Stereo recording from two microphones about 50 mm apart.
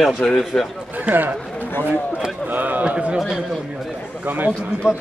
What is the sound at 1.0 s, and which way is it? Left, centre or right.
Speech, right.